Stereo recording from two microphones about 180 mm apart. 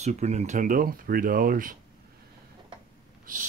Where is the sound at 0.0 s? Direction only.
40° right (ahead or behind).